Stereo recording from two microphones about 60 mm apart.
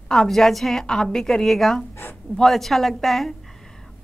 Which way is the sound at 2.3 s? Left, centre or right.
Centre.